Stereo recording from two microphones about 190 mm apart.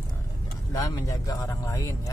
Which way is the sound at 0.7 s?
20° left (ahead or behind).